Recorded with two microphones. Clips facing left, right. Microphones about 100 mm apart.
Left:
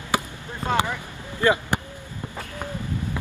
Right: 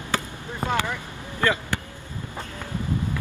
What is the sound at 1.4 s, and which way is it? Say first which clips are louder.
Vehicle: left 3 dB; 20° left (ahead or behind).